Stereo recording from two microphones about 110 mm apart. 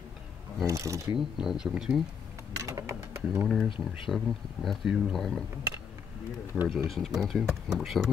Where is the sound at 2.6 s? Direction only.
25° right (ahead or behind).